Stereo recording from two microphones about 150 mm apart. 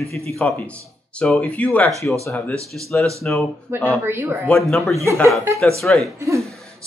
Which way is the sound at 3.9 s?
15° right (ahead or behind).